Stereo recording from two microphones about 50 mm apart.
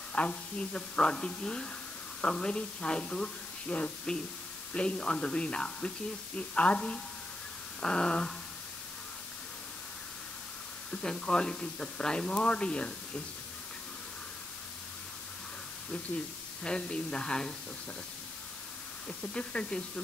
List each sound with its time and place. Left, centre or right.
0.1 s a woman's voice: left
10.9 s speech: centre
16.6 s a woman's voice: centre
19.0 s a woman's voice: left